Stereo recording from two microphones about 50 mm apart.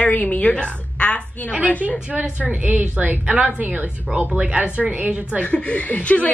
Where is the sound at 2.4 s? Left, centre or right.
Right.